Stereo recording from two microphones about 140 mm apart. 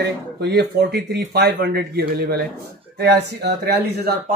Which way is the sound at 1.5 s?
90° right.